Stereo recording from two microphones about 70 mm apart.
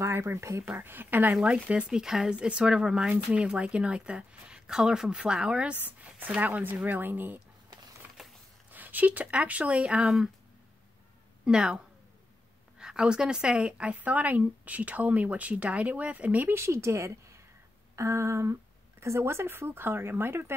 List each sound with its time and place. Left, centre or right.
0.0 s speech: right
0.7 s speech: right
1.3 s a woman's voice: centre
8.2 s a sound: centre
8.7 s speech: right
11.4 s a woman's voice: centre
16.5 s speech: right